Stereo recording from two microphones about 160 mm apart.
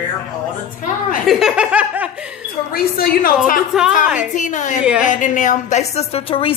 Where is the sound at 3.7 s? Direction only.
Centre (ahead or behind).